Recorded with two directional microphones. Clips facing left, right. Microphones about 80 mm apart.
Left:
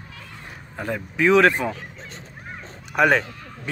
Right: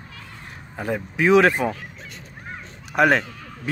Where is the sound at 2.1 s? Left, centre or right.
Left.